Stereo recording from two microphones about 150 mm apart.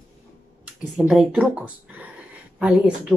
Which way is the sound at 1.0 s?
5° right (ahead or behind).